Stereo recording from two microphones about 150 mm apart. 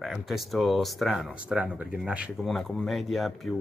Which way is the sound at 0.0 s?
Centre (ahead or behind).